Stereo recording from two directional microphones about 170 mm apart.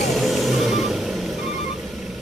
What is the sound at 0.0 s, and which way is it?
Vehicle, centre (ahead or behind).